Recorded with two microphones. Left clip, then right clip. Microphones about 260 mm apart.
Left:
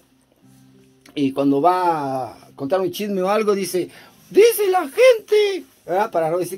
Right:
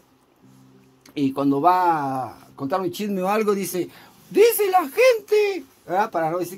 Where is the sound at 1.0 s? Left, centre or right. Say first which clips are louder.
Left 3 dB; right.